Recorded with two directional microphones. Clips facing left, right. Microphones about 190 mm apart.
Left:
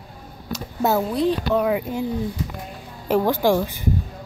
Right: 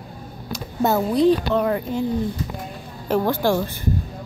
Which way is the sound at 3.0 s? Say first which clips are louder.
Left 1 dB; 15° left (ahead or behind).